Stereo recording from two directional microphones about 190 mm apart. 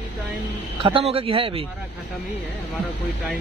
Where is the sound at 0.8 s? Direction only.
30° right (ahead or behind).